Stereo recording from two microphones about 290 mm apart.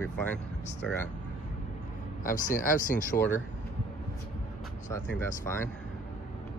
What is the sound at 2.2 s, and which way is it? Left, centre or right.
Speech, left.